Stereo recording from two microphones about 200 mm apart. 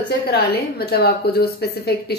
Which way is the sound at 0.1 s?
50° left (ahead or behind).